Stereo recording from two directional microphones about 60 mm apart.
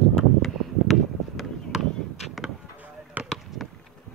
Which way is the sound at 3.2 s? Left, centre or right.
Right.